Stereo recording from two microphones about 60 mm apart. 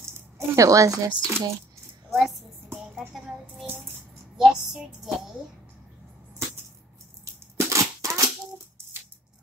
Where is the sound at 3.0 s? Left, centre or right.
Centre.